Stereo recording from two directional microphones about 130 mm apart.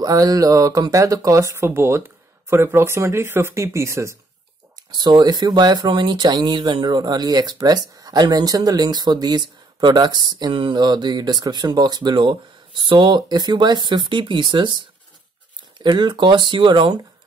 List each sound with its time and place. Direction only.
0.0 s speech: 30° right (ahead or behind)
4.9 s speech: 35° right (ahead or behind)